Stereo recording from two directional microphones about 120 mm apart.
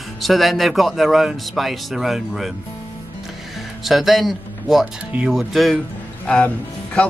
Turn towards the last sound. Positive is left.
turn(degrees=10)  # may be behind; listen again after turning